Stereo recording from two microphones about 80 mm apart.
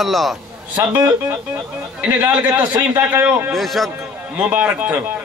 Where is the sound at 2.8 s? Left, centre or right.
Right.